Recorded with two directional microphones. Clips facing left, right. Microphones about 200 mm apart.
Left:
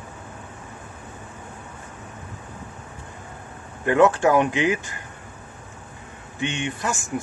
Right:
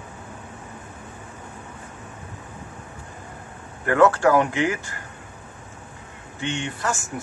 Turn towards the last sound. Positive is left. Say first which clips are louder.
# even
turn(degrees=15)  # may be behind; listen again after turning